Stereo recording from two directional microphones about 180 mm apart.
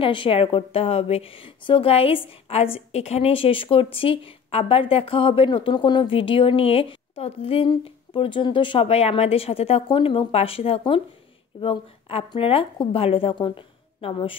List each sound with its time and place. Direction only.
0.0 s a woman's voice: 30° left (ahead or behind)